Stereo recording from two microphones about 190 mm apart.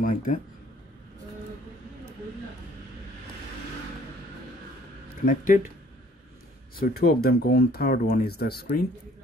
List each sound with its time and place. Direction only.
0.0 s speech: 45° left (ahead or behind)
5.2 s speech: 45° left (ahead or behind)
6.8 s speech: 55° left (ahead or behind)